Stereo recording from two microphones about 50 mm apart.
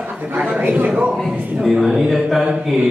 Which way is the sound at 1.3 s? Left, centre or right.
Centre.